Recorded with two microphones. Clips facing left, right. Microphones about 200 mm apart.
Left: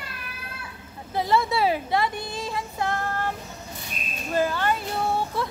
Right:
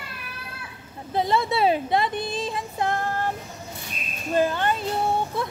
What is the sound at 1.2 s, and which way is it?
Speech, 20° right (ahead or behind).